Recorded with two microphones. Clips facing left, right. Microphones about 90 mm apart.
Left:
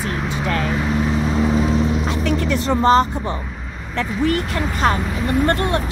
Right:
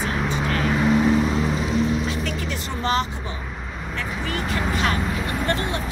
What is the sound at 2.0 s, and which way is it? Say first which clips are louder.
Vehicle: left 7 dB; 55° left (ahead or behind).